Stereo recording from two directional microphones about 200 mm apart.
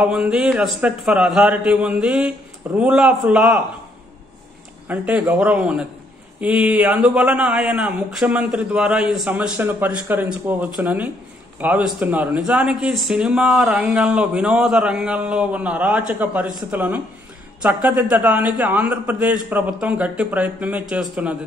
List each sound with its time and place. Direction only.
0.0 s a man's voice: 5° right (ahead or behind)
4.8 s a man's voice: 10° right (ahead or behind)